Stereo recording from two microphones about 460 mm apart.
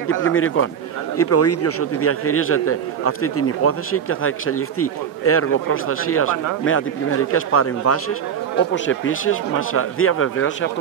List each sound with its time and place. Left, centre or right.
0.2 s a man's voice: left